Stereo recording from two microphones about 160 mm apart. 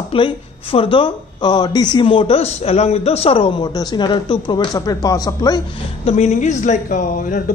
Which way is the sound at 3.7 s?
25° left (ahead or behind).